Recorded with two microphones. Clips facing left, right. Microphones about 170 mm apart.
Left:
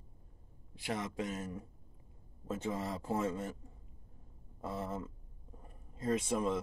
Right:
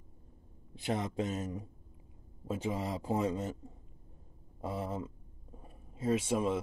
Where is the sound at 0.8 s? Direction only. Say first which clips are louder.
Right 4 dB; 25° right (ahead or behind).